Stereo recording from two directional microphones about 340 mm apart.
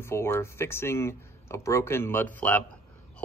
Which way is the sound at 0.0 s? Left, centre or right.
Centre.